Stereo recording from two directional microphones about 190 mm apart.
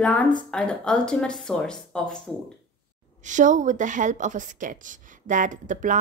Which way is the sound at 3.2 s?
40° right (ahead or behind).